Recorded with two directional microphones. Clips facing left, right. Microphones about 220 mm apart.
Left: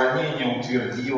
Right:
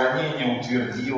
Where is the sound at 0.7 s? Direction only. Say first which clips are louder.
Even; centre (ahead or behind).